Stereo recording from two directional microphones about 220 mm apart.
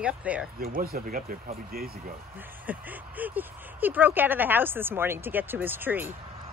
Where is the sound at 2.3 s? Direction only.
10° right (ahead or behind).